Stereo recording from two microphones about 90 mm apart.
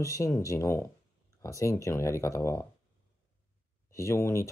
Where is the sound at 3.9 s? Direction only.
30° left (ahead or behind).